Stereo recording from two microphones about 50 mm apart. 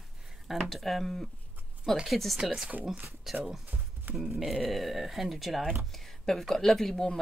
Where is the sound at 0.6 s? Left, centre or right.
Centre.